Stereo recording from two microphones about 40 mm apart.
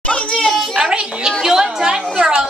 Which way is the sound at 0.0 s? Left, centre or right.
Left.